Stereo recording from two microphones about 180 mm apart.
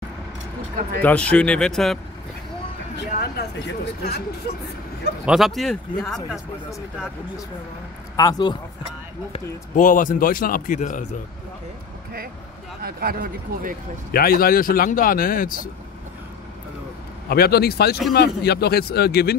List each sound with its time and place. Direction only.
1.0 s speech: 5° left (ahead or behind)
3.1 s a man's voice: 60° left (ahead or behind)
5.2 s speech: centre (ahead or behind)
8.2 s speech: 25° left (ahead or behind)
9.3 s speech: 45° left (ahead or behind)
12.8 s speech: 55° right (ahead or behind)
14.1 s speech: 55° left (ahead or behind)
17.3 s a man's voice: 60° left (ahead or behind)